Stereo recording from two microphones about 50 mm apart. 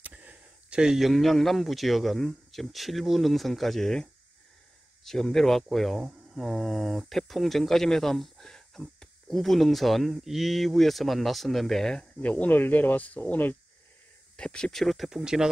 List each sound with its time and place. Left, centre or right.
0.0 s a sound: right
0.7 s speech: centre
12.2 s speech: left
14.3 s speech: centre
15.0 s speech: centre